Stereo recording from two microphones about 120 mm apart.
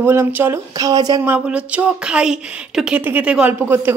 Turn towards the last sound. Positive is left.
turn(degrees=-20)  # may be behind; listen again after turning